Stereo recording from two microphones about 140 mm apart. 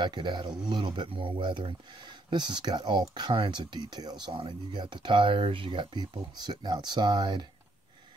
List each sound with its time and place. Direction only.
0.0 s speech: 35° right (ahead or behind)